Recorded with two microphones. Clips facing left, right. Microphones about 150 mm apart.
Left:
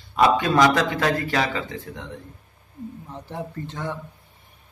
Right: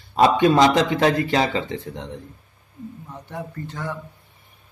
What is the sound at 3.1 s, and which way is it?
Speech, 25° left (ahead or behind).